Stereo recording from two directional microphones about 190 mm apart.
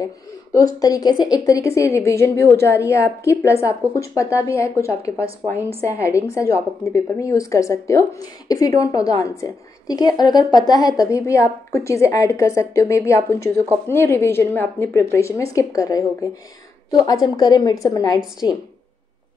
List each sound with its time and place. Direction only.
0.0 s a woman's voice: 20° left (ahead or behind)
6.9 s a woman's voice: 15° left (ahead or behind)